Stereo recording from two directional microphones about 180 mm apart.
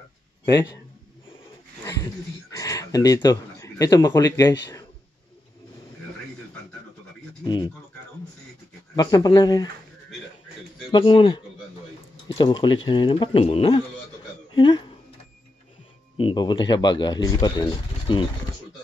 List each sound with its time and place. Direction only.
2.5 s speech: 20° left (ahead or behind)
8.9 s speech: 20° left (ahead or behind)
10.9 s speech: 30° left (ahead or behind)
16.2 s speech: 30° left (ahead or behind)